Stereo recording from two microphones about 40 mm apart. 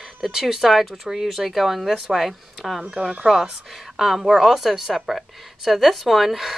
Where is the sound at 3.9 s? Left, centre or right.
Centre.